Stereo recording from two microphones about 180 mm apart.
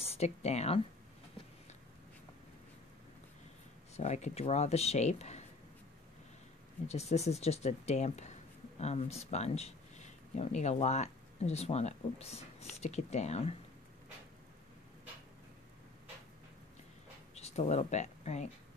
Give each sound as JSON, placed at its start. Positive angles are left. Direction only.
{"t": 0.0, "sound": "a woman's voice", "side_deg": 35}
{"t": 3.9, "sound": "speech", "side_deg": 40}
{"t": 6.9, "sound": "speech", "side_deg": 35}
{"t": 17.4, "sound": "speech", "side_deg": 35}